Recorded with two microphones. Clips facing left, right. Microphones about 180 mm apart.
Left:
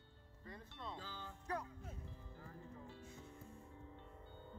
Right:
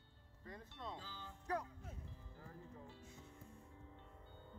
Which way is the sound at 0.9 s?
55° left (ahead or behind).